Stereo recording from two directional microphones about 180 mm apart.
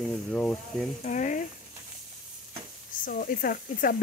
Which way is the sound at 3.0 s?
50° left (ahead or behind).